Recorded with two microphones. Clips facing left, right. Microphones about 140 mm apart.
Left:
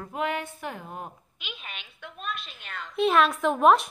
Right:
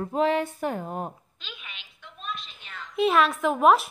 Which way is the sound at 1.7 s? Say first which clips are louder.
Left 5 dB; 60° left (ahead or behind).